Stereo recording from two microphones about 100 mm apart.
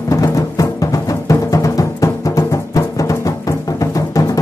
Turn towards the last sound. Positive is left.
turn(degrees=35)  # may be behind; listen again after turning